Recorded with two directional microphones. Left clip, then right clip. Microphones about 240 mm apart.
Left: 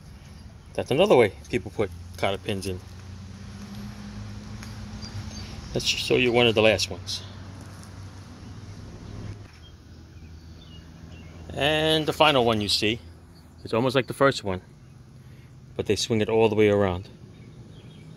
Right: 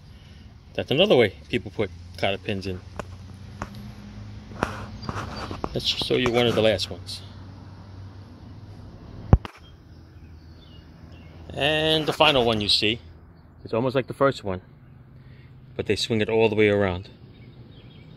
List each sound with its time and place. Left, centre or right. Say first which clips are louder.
0.7 s speech: even; centre
5.7 s speech: left 1 dB; centre
11.4 s speech: right 1 dB; centre
13.7 s speech: left 1 dB; centre
15.7 s speech: even; centre